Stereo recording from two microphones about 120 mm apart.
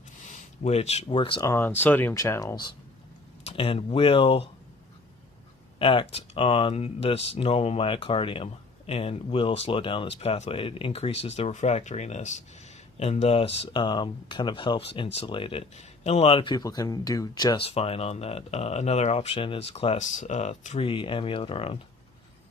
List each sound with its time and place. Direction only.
0.3 s a sound: 60° left (ahead or behind)
1.1 s speech: 45° left (ahead or behind)
1.4 s speech: 25° left (ahead or behind)
3.4 s speech: 55° left (ahead or behind)
5.8 s speech: 50° left (ahead or behind); by 12.4 s 75° left (ahead or behind)
13.0 s speech: 60° left (ahead or behind)
13.8 s speech: 40° left (ahead or behind)
16.0 s speech: 60° left (ahead or behind)
16.5 s speech: 30° left (ahead or behind)
17.6 s speech: 55° left (ahead or behind)
20.0 s speech: 90° left; by 20.8 s 70° left (ahead or behind)
20.8 s speech: 45° left (ahead or behind)